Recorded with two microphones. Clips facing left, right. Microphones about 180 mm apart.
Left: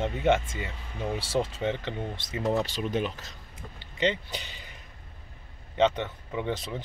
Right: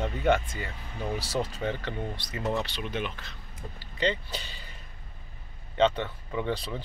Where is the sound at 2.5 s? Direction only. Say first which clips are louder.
Left 4 dB; 45° left (ahead or behind).